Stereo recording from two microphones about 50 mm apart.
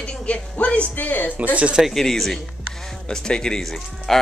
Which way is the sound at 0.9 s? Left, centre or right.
Left.